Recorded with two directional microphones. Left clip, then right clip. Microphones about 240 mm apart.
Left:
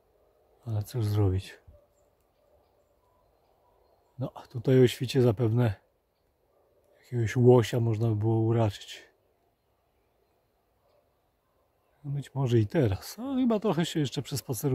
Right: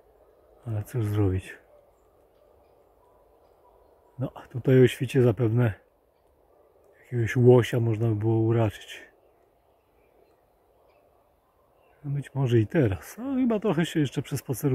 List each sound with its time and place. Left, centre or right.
0.7 s speech: centre
4.2 s speech: centre
7.1 s speech: centre
12.1 s speech: centre